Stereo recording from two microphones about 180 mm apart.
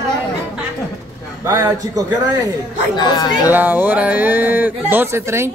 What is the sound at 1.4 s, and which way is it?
Speech, 20° right (ahead or behind).